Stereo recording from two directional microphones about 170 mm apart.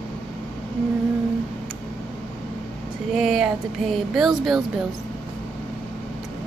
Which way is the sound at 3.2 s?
Centre (ahead or behind).